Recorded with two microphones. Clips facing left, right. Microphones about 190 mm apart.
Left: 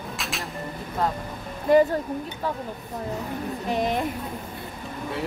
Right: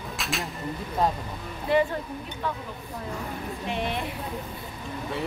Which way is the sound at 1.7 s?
45° left (ahead or behind).